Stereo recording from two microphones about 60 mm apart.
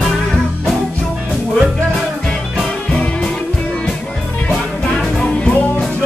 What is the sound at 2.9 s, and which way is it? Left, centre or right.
Music, centre.